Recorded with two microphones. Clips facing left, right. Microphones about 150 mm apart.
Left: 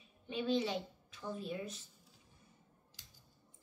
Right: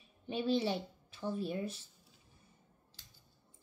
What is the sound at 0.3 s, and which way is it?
Speech, 35° right (ahead or behind).